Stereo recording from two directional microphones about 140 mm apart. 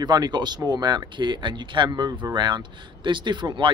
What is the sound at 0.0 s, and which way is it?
Speech, 30° right (ahead or behind).